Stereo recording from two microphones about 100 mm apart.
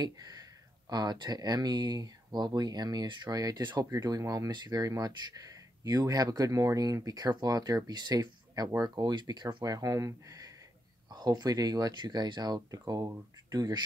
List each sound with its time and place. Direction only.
0.0 s speech: 40° right (ahead or behind)